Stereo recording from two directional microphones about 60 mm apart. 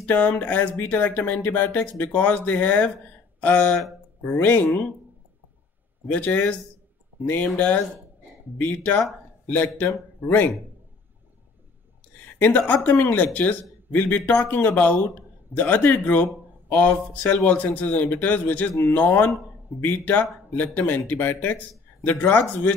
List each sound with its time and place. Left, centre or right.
0.0 s speech: left
6.0 s speech: left
12.4 s speech: left